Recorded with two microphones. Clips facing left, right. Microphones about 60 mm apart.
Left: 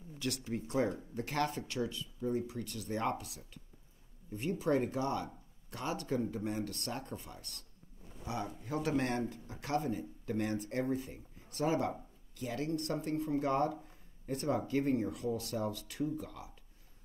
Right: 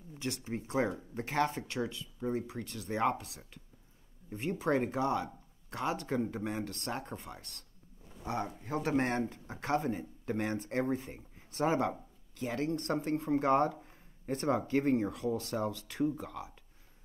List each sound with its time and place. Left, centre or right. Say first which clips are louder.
0.2 s speech: even; right
0.6 s speech: right 1 dB; right
4.3 s speech: right 1 dB; right
5.2 s a sound: right 2 dB; right
5.9 s speech: right 1 dB; right